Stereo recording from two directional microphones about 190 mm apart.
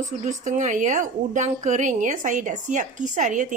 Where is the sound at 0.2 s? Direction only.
40° right (ahead or behind).